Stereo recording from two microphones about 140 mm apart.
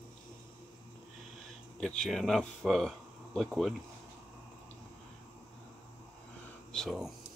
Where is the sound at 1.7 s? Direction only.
5° left (ahead or behind).